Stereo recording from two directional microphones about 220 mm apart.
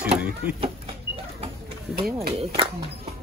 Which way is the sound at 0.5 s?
25° right (ahead or behind).